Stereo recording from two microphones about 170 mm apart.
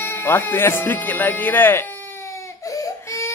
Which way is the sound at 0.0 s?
15° left (ahead or behind).